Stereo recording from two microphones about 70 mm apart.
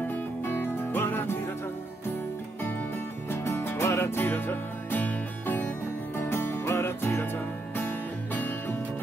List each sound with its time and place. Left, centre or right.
0.0 s music: left
3.3 s music: left